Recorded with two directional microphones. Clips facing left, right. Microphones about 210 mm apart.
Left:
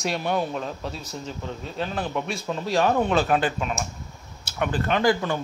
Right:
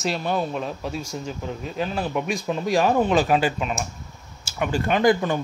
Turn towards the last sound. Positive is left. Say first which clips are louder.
# right 3 dB
turn(degrees=-20)  # may be behind; listen again after turning